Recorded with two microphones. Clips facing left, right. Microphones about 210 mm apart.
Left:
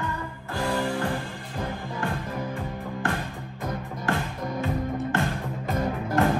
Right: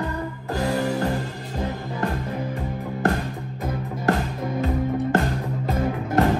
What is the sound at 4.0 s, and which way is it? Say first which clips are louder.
Music: right 6 dB; 40° right (ahead or behind).